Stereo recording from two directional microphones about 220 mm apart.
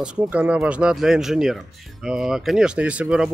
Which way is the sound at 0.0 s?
5° right (ahead or behind).